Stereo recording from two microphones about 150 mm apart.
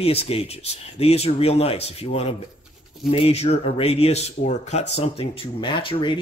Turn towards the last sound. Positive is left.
turn(degrees=35)  # may be behind; listen again after turning